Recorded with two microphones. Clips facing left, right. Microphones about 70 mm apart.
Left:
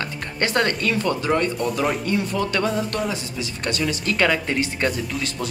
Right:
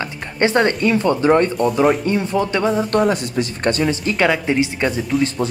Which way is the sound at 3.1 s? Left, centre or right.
Right.